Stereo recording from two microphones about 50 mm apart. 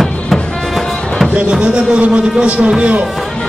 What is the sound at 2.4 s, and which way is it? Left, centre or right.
Speech, right.